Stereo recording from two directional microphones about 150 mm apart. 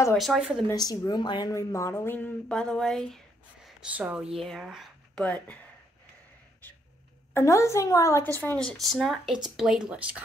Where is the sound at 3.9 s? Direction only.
10° right (ahead or behind).